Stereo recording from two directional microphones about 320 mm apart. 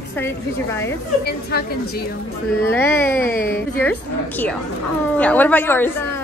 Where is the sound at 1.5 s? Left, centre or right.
Left.